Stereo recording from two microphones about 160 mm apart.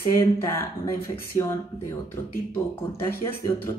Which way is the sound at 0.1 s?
15° left (ahead or behind).